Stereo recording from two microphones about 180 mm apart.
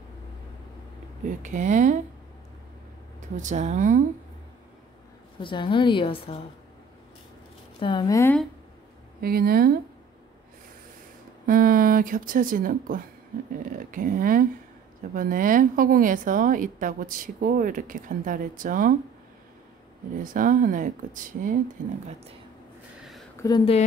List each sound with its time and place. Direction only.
1.2 s a woman's voice: 45° right (ahead or behind)
3.2 s a woman's voice: 45° right (ahead or behind)
5.4 s a woman's voice: 25° left (ahead or behind)
7.8 s speech: 20° left (ahead or behind)
9.2 s speech: 55° right (ahead or behind)
11.4 s a woman's voice: 50° right (ahead or behind)
20.2 s a woman's voice: 50° right (ahead or behind)
22.9 s a sound: centre (ahead or behind)
23.4 s a woman's voice: 25° left (ahead or behind)